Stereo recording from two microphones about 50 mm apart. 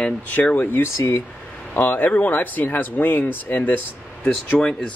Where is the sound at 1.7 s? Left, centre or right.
Left.